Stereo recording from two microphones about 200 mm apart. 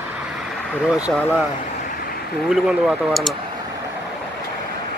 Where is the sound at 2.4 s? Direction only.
Centre (ahead or behind).